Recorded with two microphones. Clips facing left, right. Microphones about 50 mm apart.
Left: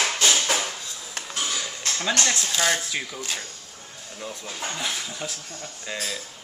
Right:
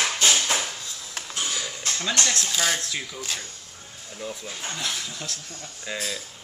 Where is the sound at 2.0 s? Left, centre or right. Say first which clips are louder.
Left 2 dB; centre.